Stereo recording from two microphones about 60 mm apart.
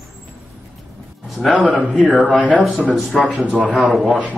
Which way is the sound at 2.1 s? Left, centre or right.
Centre.